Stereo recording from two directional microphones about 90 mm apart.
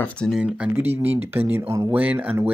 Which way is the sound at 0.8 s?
20° right (ahead or behind).